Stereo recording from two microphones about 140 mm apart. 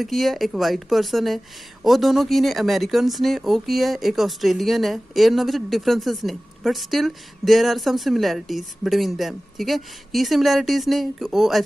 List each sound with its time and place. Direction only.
0.0 s a woman's voice: centre (ahead or behind)